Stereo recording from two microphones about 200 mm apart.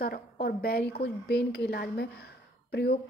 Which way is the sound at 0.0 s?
50° left (ahead or behind).